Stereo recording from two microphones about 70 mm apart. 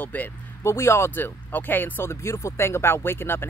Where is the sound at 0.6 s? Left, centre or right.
Left.